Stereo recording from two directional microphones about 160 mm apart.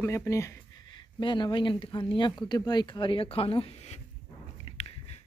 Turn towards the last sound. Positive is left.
turn(degrees=40)  # may be behind; listen again after turning